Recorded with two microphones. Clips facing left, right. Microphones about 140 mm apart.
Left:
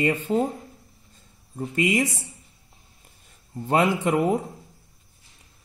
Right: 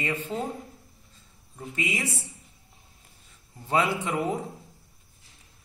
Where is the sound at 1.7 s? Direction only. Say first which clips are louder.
Left 9 dB; 50° left (ahead or behind).